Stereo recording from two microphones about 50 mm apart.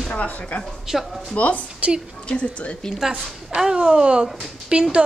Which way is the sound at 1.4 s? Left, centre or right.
Left.